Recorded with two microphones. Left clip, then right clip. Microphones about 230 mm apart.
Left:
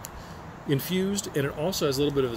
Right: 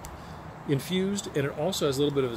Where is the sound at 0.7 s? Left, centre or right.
Centre.